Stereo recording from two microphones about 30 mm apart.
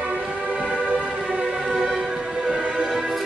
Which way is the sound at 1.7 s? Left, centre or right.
Centre.